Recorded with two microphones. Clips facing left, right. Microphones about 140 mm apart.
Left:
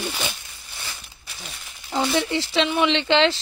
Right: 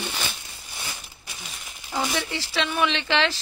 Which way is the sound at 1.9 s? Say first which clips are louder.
Left 5 dB; 30° left (ahead or behind).